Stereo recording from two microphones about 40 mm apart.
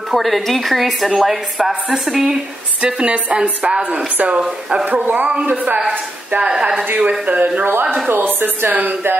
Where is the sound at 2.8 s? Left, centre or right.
Right.